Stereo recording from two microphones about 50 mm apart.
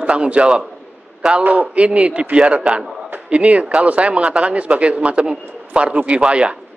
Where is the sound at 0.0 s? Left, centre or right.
Right.